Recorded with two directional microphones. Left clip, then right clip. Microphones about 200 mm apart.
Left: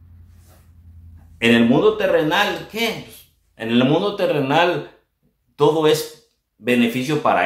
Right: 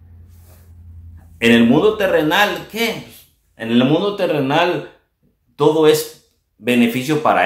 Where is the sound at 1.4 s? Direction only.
5° right (ahead or behind).